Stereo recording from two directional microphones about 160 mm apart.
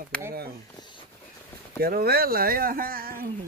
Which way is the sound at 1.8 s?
75° right (ahead or behind).